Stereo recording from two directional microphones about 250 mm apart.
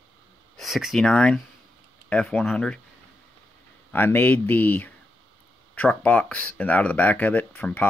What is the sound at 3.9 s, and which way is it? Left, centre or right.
Speech, centre.